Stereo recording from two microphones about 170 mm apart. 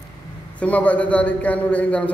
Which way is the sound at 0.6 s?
10° left (ahead or behind).